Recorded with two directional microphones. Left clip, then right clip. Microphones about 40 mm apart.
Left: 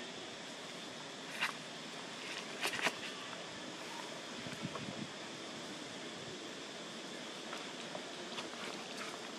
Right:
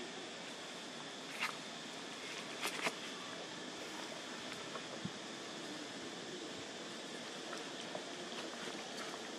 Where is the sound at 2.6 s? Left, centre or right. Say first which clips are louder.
Left 4 dB; left.